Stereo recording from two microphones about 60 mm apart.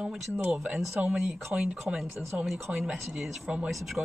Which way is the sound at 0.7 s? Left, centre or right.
Centre.